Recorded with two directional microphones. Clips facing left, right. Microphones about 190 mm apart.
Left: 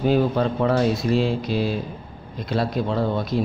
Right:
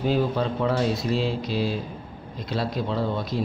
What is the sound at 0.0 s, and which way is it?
A man's voice, 55° left (ahead or behind).